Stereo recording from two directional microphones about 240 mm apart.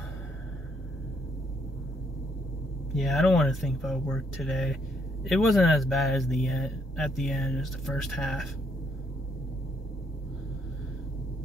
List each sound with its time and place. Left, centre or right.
3.0 s speech: centre